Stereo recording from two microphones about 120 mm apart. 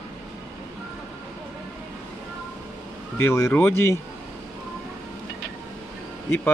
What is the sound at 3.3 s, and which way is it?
Speech, 20° left (ahead or behind).